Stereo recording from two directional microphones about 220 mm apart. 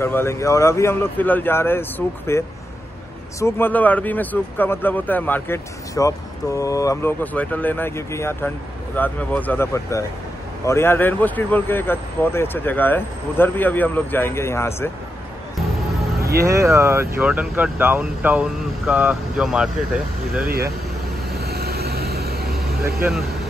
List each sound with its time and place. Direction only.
0.0 s speech: 10° left (ahead or behind)
16.4 s speech: 15° right (ahead or behind)
21.4 s vehicle: 45° right (ahead or behind)